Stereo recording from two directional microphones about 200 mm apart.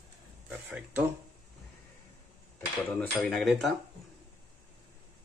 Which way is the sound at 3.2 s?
Centre (ahead or behind).